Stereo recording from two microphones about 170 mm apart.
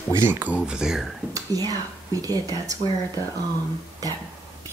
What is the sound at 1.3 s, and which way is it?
Speech, 20° right (ahead or behind).